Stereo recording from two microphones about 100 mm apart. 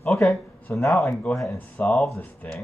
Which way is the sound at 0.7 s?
15° left (ahead or behind).